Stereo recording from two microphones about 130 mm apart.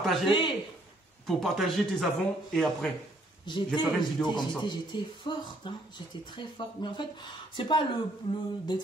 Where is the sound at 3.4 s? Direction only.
35° left (ahead or behind).